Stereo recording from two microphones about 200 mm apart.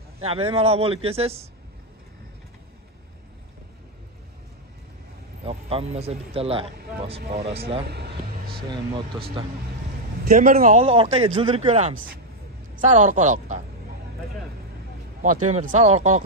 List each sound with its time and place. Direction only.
0.2 s speech: 30° right (ahead or behind)
5.4 s speech: 30° right (ahead or behind)
7.9 s a sound: 50° right (ahead or behind)
8.6 s speech: 25° right (ahead or behind)
10.2 s a man's voice: 45° right (ahead or behind)
10.8 s speech: 30° right (ahead or behind)
15.2 s speech: 40° right (ahead or behind)